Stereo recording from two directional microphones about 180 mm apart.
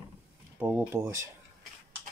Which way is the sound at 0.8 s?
15° right (ahead or behind).